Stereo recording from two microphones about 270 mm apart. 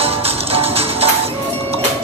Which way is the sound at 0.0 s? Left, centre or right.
Right.